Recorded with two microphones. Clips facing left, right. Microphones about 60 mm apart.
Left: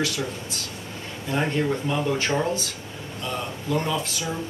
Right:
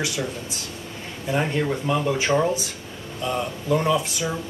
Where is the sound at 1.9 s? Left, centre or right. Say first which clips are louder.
Right 3 dB; centre.